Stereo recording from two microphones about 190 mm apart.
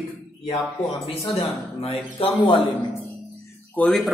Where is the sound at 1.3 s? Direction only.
30° left (ahead or behind).